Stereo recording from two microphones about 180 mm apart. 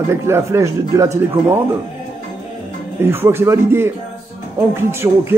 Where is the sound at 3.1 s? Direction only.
15° right (ahead or behind).